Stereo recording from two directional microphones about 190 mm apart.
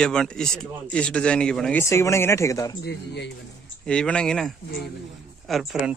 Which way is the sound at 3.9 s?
5° left (ahead or behind).